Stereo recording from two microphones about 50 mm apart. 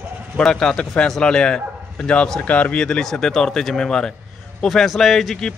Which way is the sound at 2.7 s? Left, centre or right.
Centre.